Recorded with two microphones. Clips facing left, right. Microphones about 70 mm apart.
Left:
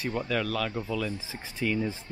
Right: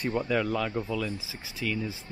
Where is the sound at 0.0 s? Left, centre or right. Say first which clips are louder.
Right 2 dB; centre.